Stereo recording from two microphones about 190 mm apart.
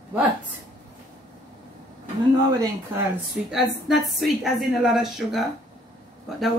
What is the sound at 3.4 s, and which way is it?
A woman's voice, centre (ahead or behind).